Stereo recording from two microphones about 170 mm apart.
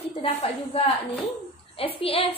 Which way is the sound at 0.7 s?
35° left (ahead or behind).